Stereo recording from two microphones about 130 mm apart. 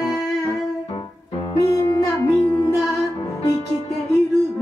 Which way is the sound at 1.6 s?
25° left (ahead or behind).